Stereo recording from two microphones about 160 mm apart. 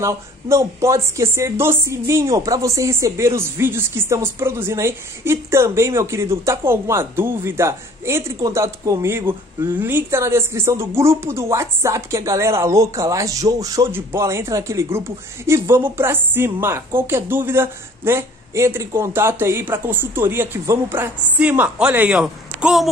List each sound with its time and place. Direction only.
0.0 s speech: 20° right (ahead or behind); by 22.8 s 5° right (ahead or behind)